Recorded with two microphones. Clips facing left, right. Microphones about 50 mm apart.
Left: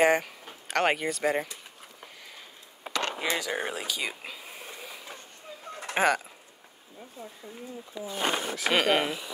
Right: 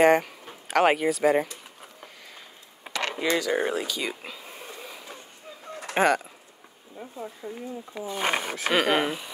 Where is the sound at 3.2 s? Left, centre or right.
Centre.